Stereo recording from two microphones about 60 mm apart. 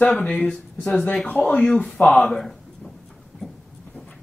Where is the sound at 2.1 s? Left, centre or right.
Centre.